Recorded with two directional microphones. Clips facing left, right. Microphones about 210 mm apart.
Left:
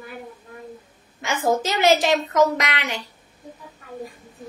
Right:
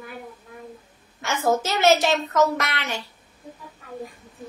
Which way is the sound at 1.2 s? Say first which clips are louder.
Left 1 dB; 15° left (ahead or behind).